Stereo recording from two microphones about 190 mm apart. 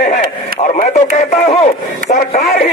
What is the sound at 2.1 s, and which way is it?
Speech, 35° left (ahead or behind).